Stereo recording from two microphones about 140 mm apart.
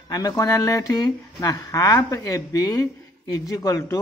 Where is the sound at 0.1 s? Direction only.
25° left (ahead or behind).